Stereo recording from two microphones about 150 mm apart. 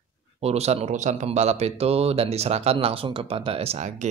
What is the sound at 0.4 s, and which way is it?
Speech, 45° right (ahead or behind).